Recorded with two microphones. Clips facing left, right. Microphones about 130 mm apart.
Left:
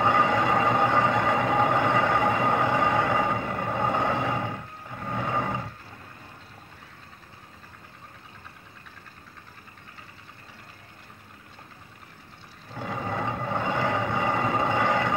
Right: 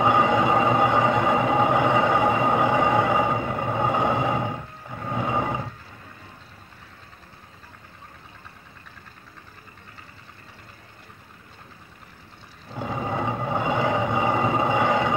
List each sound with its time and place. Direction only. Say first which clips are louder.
0.0 s vehicle: right 3 dB; 15° right (ahead or behind)
5.0 s roar: right 3 dB; 15° right (ahead or behind)
12.7 s vehicle: right 3 dB; 10° right (ahead or behind)